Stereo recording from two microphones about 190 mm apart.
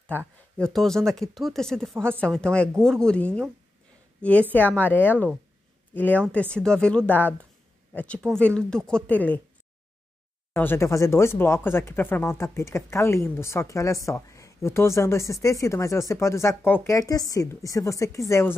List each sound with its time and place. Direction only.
0.6 s speech: 5° left (ahead or behind)
10.5 s speech: 10° left (ahead or behind)